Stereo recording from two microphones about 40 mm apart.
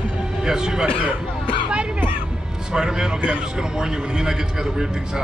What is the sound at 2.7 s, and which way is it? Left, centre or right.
A man's voice, centre.